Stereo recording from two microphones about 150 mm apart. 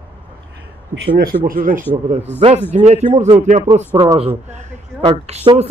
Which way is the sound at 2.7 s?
50° right (ahead or behind).